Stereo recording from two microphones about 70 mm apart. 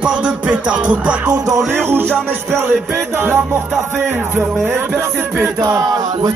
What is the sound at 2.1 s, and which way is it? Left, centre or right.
Music, centre.